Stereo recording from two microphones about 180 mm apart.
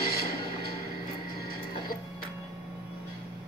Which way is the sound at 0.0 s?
60° left (ahead or behind).